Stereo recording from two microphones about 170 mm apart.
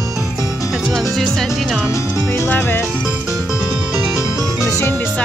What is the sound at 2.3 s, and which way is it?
Speech, 10° left (ahead or behind).